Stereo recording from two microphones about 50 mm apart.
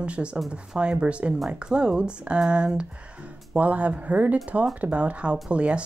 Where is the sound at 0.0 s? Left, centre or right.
Right.